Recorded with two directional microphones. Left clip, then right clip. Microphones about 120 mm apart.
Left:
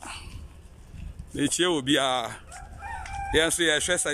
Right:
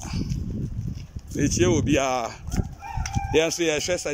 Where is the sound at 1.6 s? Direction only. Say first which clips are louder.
Right 2 dB; centre (ahead or behind).